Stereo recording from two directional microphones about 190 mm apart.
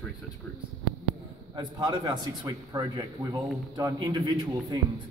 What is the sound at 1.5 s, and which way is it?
A man's voice, 20° right (ahead or behind).